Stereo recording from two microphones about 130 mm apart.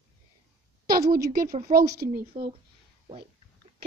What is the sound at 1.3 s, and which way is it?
Speech, 90° right.